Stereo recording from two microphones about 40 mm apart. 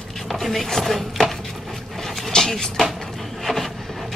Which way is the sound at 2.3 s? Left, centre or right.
Centre.